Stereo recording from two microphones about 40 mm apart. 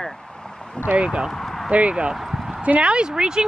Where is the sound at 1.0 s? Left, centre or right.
Right.